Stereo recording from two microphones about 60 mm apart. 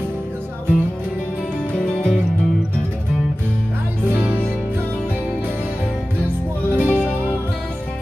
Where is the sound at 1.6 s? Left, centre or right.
Centre.